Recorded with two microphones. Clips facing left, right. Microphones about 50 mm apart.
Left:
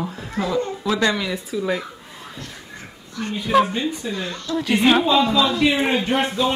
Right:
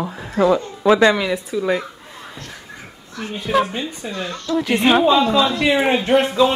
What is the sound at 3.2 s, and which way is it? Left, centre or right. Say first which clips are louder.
Speech: left 1 dB; centre.